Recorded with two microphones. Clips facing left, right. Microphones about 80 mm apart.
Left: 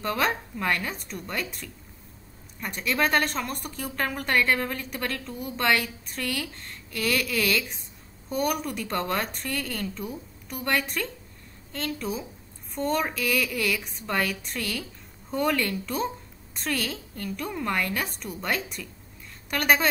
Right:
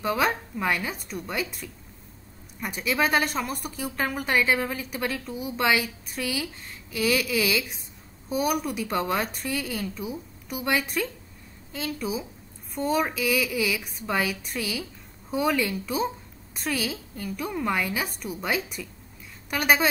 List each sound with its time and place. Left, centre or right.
0.0 s a woman's voice: centre